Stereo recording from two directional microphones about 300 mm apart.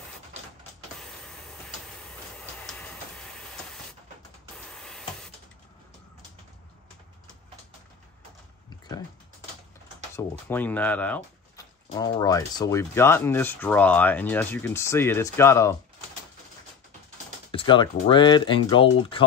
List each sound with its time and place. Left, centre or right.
0.9 s power windows: centre
2.0 s train: centre
4.6 s printer: centre
10.1 s speech: centre
17.5 s speech: centre